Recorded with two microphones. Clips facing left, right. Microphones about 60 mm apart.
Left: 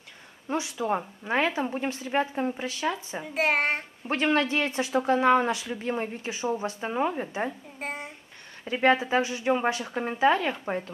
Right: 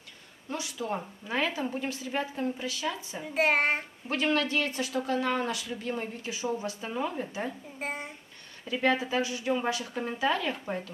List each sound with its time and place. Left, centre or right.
0.5 s speech: left
3.3 s a child's voice: centre
4.1 s speech: left
7.8 s a sound: centre
8.6 s a woman's voice: left